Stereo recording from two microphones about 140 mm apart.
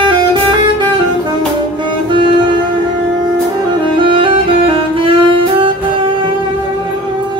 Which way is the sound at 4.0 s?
35° right (ahead or behind).